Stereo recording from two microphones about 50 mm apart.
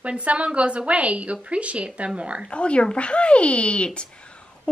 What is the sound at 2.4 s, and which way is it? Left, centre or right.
Speech, left.